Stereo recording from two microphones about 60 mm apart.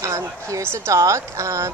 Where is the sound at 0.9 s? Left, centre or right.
Right.